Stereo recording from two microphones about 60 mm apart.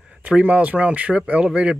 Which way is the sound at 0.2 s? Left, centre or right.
Right.